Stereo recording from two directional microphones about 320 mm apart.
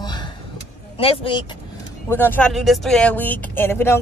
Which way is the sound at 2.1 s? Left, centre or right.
Centre.